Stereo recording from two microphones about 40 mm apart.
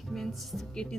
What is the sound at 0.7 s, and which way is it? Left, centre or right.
Speech, centre.